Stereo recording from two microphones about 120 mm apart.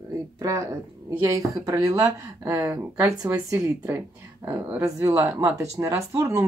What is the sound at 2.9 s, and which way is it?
Speech, 5° right (ahead or behind).